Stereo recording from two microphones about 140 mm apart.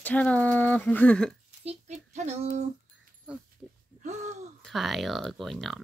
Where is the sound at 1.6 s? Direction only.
50° right (ahead or behind).